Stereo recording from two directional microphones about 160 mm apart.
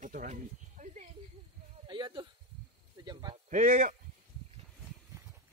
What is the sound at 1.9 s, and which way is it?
Speech, 30° right (ahead or behind).